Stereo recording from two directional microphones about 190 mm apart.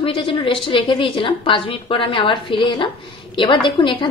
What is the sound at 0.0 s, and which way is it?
A woman's voice, 25° left (ahead or behind).